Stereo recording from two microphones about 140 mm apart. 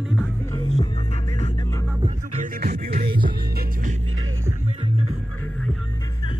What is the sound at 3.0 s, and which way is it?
Music, 35° right (ahead or behind).